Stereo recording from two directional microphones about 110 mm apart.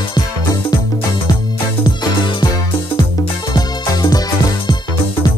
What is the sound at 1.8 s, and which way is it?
Music, 40° left (ahead or behind).